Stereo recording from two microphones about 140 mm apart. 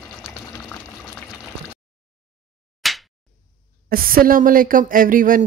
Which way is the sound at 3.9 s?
90° right.